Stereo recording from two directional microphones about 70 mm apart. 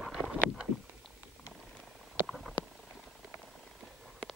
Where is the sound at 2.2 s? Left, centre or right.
Centre.